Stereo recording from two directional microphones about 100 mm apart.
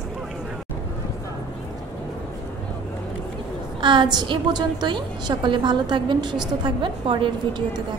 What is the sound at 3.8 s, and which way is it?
A woman's voice, 50° right (ahead or behind).